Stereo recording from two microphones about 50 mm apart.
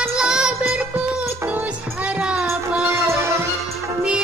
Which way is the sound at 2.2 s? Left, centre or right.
Centre.